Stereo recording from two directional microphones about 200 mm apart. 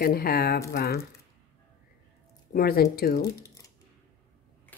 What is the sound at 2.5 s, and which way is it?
Speech, 50° left (ahead or behind).